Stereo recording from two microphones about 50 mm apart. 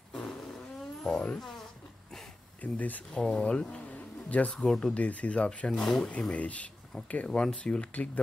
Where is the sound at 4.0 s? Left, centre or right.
Left.